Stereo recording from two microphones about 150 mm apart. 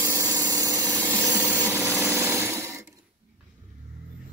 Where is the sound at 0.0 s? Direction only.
20° right (ahead or behind).